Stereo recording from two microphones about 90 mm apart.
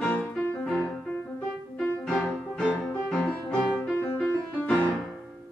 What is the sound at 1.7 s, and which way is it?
Music, 10° left (ahead or behind).